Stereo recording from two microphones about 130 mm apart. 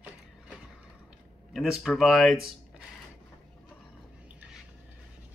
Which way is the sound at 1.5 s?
Centre (ahead or behind).